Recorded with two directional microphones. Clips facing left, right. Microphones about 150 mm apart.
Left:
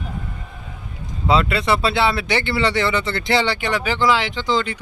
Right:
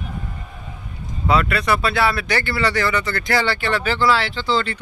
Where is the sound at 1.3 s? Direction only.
25° left (ahead or behind).